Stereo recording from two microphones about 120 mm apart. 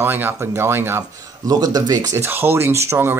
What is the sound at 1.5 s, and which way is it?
Speech, 35° right (ahead or behind).